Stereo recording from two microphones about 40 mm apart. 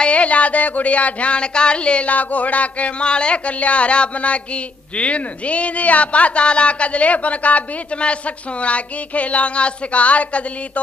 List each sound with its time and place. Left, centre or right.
0.0 s a man's voice: left